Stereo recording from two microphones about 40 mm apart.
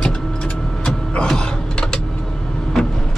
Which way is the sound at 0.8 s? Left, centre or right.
Left.